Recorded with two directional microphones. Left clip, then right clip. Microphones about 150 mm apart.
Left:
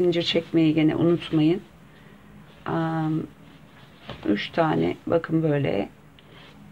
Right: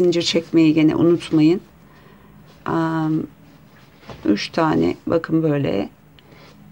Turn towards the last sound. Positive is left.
turn(degrees=-35)  # may be behind; listen again after turning